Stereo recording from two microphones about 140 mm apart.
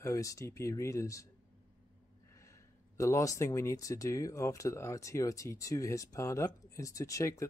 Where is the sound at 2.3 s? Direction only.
20° left (ahead or behind).